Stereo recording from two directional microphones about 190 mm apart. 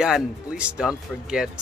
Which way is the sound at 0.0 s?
5° right (ahead or behind).